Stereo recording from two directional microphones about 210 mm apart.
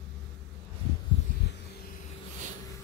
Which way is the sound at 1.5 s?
50° left (ahead or behind).